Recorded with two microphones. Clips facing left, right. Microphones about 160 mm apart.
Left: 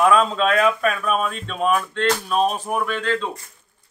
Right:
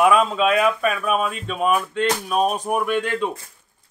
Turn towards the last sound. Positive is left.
turn(degrees=-15)  # may be behind; listen again after turning